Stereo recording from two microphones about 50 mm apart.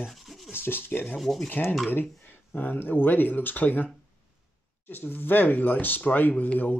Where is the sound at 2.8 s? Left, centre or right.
Left.